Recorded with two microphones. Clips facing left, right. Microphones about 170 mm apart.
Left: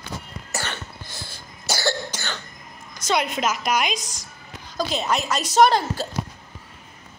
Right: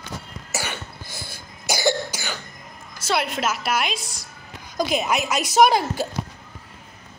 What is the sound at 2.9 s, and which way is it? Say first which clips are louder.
Speech: left 1 dB; 5° right (ahead or behind).